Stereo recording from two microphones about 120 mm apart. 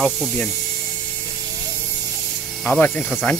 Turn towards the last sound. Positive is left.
turn(degrees=15)  # may be behind; listen again after turning